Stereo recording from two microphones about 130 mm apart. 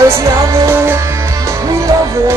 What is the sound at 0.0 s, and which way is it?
Music, 25° right (ahead or behind).